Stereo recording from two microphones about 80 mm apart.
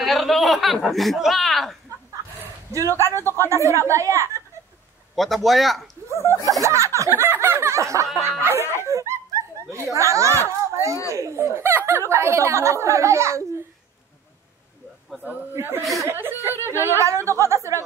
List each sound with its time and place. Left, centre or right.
0.0 s speech: centre
2.7 s speech: right
5.1 s a man's voice: centre
6.0 s a sound: right
6.6 s speech: right
7.1 s snicker: right
8.2 s speech: right
8.8 s snicker: right
9.9 s a child's voice: right
15.5 s speech: right
17.0 s speech: right